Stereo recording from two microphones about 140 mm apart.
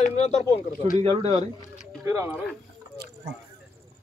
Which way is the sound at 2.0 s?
20° right (ahead or behind).